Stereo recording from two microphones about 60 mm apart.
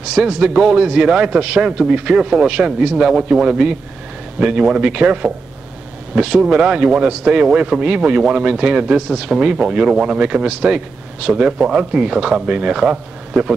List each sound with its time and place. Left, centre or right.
0.1 s a man's voice: centre